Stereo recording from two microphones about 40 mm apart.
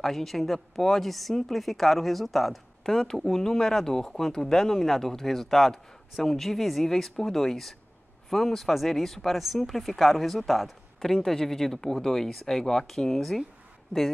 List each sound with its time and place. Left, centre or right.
0.0 s a woman's voice: centre